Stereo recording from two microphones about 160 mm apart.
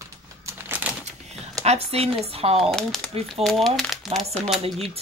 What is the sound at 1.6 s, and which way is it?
Speech, 40° right (ahead or behind).